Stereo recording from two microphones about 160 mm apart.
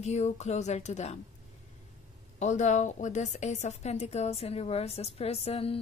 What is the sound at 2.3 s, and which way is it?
A woman's voice, 45° left (ahead or behind).